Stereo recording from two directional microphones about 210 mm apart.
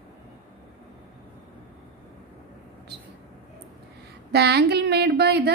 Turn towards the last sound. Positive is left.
turn(degrees=-50)  # may be behind; listen again after turning